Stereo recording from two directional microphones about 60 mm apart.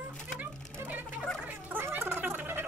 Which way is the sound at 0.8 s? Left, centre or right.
Right.